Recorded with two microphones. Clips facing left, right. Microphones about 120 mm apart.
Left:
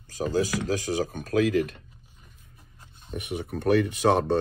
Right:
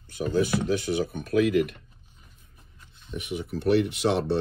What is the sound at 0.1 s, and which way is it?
Speech, 35° left (ahead or behind).